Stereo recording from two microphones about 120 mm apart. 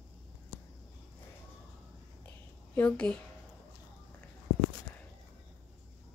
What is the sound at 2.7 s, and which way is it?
Speech, 10° left (ahead or behind).